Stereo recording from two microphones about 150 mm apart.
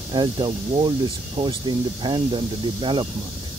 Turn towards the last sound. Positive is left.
turn(degrees=-35)  # may be behind; listen again after turning